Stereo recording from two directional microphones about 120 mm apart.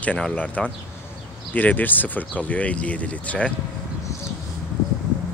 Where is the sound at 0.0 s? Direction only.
10° left (ahead or behind).